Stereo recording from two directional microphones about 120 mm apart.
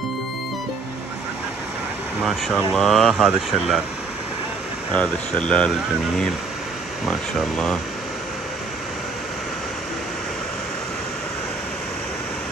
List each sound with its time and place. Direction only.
2.2 s speech: centre (ahead or behind)
4.9 s speech: 10° left (ahead or behind)
7.1 s speech: 5° left (ahead or behind)